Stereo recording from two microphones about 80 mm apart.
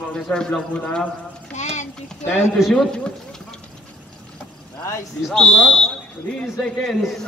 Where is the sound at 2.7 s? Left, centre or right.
Centre.